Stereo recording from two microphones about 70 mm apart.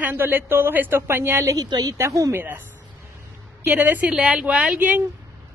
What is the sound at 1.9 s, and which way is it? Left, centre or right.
Speech, right.